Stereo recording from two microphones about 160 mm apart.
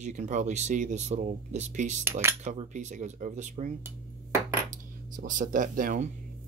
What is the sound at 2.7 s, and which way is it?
Speech, 50° right (ahead or behind).